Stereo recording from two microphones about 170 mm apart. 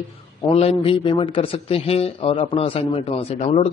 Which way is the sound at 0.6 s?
35° left (ahead or behind).